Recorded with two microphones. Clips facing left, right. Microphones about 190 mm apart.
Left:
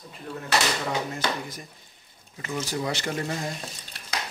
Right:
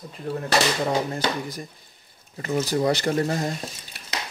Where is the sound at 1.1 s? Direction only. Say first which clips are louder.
Right 3 dB; 35° right (ahead or behind).